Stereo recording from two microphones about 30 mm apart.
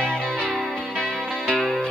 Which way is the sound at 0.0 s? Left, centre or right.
Left.